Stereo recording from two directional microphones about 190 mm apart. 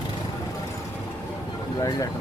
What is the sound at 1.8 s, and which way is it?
Speech, 20° left (ahead or behind).